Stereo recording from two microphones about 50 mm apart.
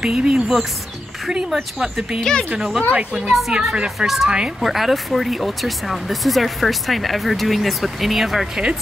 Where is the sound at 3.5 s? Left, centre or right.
Centre.